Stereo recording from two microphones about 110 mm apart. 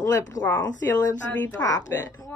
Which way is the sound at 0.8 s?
15° left (ahead or behind).